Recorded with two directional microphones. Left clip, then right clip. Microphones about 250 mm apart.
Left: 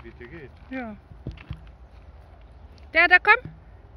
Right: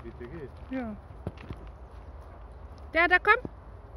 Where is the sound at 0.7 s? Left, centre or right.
Centre.